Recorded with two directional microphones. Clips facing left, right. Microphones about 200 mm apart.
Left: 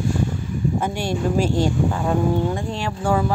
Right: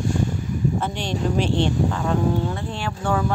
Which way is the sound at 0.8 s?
10° left (ahead or behind).